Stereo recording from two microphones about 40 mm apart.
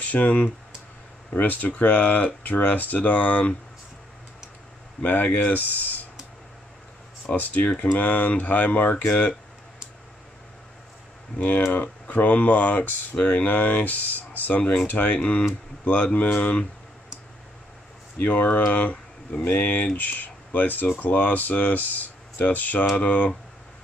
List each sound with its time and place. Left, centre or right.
0.0 s speech: left
5.0 s speech: left
7.3 s speech: left
11.3 s speech: left
18.2 s speech: left